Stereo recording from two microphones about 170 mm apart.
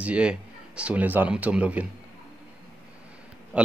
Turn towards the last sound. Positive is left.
turn(degrees=-5)  # may be behind; listen again after turning